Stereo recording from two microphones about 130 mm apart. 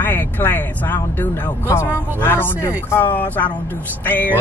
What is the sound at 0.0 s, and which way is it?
Speech, 15° left (ahead or behind).